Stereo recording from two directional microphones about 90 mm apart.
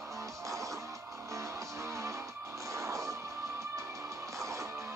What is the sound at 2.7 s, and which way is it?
Music, 35° right (ahead or behind).